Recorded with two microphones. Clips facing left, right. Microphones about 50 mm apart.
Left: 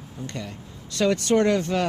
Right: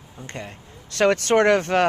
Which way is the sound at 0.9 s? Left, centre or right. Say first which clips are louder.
Right 3 dB; right.